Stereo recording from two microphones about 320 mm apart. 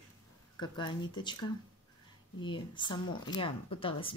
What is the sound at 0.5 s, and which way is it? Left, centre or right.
Speech, centre.